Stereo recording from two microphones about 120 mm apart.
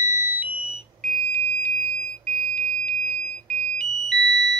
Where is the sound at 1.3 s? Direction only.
10° left (ahead or behind).